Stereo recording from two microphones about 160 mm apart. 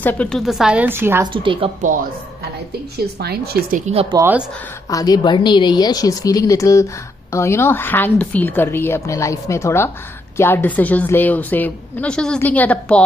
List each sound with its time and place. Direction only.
0.0 s a woman's voice: 10° left (ahead or behind); by 1.2 s 15° right (ahead or behind)
1.2 s speech: 30° right (ahead or behind)
3.7 s speech: 40° right (ahead or behind)
4.2 s speech: 10° right (ahead or behind)
4.8 s a woman's voice: 25° left (ahead or behind)